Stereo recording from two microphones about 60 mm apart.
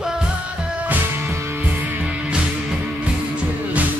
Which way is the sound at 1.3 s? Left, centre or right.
Right.